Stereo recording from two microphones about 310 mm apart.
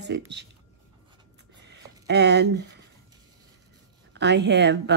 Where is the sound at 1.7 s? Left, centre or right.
Right.